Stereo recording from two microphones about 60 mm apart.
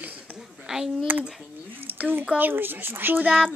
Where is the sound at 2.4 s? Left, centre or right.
Right.